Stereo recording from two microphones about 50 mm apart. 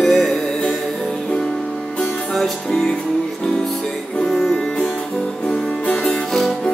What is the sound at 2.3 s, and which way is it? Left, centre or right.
Music, centre.